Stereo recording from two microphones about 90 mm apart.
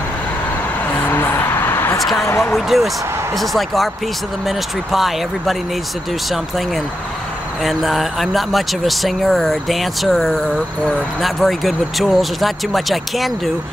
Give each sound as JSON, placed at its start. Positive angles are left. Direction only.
{"t": 0.9, "sound": "a sound", "side_deg": 20}
{"t": 2.1, "sound": "speech", "side_deg": 35}
{"t": 2.5, "sound": "speech", "side_deg": 0}